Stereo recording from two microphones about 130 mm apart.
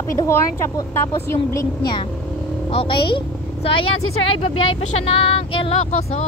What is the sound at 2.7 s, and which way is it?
A woman's voice, 40° left (ahead or behind).